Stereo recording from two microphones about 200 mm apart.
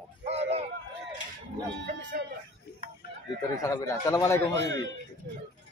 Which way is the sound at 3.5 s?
15° left (ahead or behind).